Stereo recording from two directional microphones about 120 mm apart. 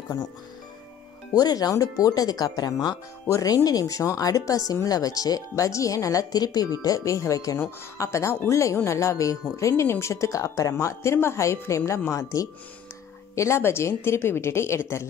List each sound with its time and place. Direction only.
1.3 s speech: 30° left (ahead or behind)